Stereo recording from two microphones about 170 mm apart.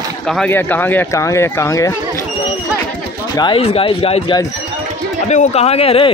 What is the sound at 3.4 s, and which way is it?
Speech, 30° left (ahead or behind).